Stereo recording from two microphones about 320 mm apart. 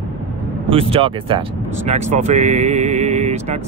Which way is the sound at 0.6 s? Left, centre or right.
Centre.